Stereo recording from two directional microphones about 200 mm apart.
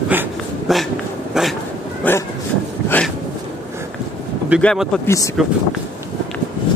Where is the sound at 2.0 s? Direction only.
10° left (ahead or behind).